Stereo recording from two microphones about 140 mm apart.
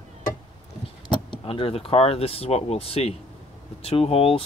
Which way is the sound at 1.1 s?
35° left (ahead or behind).